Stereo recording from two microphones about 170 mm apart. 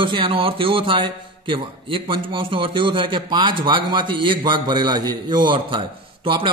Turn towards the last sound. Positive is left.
turn(degrees=-30)  # may be behind; listen again after turning